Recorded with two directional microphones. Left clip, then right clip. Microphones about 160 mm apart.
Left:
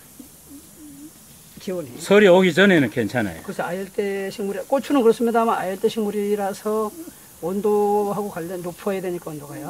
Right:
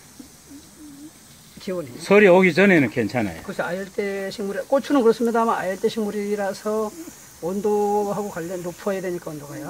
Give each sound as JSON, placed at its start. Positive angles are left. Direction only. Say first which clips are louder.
{"t": 1.7, "sound": "speech", "louder": "even", "side_deg": 5}